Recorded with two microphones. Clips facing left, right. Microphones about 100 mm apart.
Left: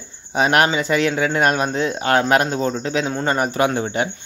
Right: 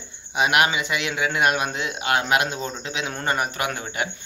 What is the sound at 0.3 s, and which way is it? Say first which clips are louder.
Speech: left 4 dB; 40° left (ahead or behind).